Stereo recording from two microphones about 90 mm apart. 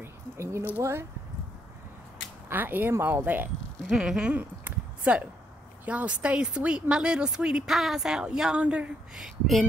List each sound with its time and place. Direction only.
0.0 s a sound: 30° right (ahead or behind)
2.5 s speech: 20° right (ahead or behind)
3.9 s speech: 10° right (ahead or behind)